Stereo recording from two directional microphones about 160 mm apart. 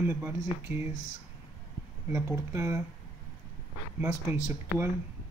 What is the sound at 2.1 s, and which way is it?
Speech, 15° right (ahead or behind).